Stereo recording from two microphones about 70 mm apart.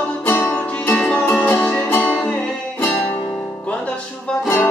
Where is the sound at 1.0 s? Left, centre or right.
Centre.